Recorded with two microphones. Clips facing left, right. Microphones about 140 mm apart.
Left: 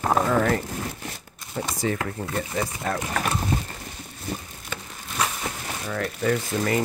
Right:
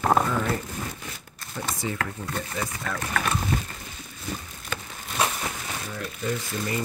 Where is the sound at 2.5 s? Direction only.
35° left (ahead or behind).